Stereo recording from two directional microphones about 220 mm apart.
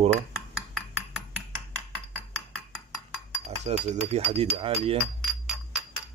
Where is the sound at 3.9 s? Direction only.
30° right (ahead or behind).